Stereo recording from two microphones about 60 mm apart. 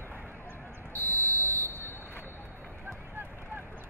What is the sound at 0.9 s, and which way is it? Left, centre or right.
Buzzer, left.